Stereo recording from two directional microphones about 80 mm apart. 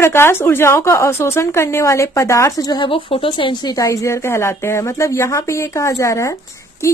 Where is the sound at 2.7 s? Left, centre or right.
Left.